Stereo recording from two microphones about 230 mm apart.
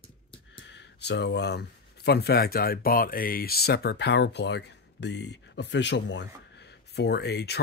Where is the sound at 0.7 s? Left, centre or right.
Left.